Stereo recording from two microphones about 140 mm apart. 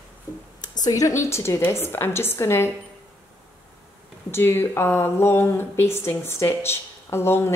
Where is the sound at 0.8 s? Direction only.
25° left (ahead or behind).